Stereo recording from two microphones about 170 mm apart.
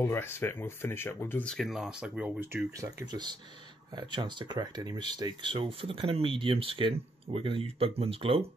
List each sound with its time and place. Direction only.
0.0 s speech: 15° left (ahead or behind); by 8.5 s 35° right (ahead or behind)